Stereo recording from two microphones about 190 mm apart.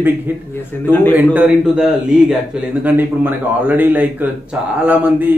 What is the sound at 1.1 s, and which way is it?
A man's voice, 10° right (ahead or behind).